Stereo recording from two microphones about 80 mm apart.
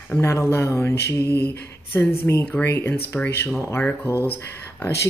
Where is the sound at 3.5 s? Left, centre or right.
Left.